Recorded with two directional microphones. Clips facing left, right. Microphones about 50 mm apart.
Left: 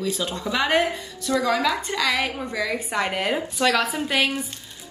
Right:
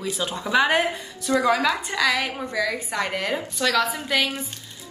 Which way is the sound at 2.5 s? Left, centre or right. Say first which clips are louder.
Even; centre.